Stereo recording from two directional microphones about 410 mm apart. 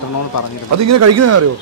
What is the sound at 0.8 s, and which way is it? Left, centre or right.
Speech, right.